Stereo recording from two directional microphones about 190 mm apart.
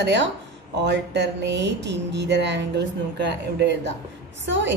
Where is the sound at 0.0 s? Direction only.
65° right (ahead or behind).